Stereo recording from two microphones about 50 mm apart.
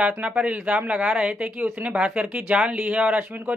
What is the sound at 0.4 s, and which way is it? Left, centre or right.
Speech, right.